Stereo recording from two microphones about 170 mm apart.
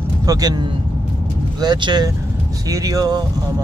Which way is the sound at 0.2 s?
20° right (ahead or behind).